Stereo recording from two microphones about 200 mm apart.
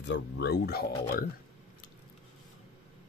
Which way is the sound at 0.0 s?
60° left (ahead or behind).